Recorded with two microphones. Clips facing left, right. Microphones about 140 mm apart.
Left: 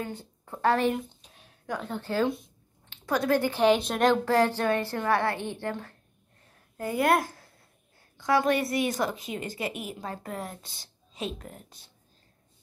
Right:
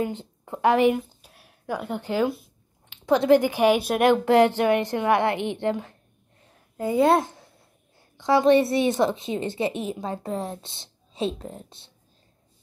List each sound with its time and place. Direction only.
0.0 s a woman's voice: 20° right (ahead or behind)
0.9 s a sound: 5° right (ahead or behind)
3.1 s a woman's voice: 20° right (ahead or behind)